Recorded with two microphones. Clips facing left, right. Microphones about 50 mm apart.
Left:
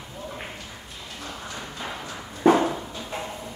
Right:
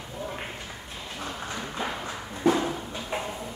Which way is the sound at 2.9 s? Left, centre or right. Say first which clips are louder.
Right 1 dB; centre.